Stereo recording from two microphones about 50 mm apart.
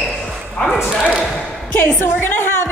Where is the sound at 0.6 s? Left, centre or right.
Centre.